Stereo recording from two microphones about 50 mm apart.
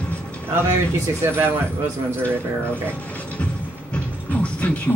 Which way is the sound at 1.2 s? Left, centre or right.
Right.